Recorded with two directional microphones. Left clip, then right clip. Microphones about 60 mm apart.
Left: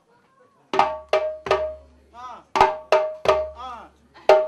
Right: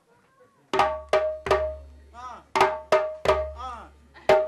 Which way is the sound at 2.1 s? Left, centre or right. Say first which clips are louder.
Left 2 dB; centre.